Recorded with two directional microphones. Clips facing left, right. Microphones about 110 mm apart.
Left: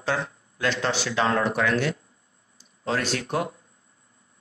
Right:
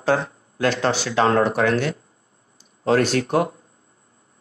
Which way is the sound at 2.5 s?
50° right (ahead or behind).